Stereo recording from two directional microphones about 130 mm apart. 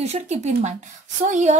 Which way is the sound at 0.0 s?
55° right (ahead or behind).